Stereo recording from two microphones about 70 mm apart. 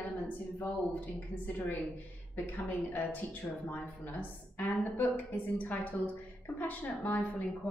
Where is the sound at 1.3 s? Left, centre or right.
Left.